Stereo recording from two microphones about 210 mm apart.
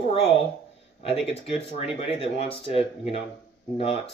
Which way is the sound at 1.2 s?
25° left (ahead or behind).